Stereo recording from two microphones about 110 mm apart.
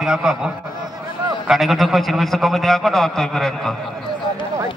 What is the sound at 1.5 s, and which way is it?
A man's voice, centre (ahead or behind).